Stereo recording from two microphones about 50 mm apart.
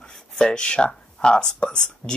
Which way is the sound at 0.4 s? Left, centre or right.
Centre.